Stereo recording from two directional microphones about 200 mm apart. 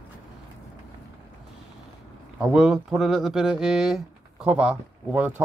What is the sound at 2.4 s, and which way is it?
Speech, 5° right (ahead or behind).